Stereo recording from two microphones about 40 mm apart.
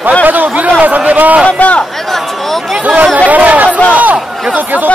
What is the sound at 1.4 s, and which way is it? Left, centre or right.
Speech, left.